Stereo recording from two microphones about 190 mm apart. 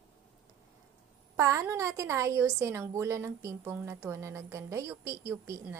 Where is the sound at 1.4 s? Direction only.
15° right (ahead or behind).